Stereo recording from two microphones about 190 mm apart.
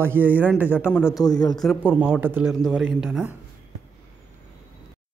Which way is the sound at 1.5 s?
Centre (ahead or behind).